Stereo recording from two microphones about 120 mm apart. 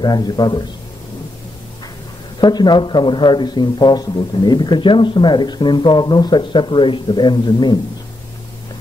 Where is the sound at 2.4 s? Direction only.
35° left (ahead or behind).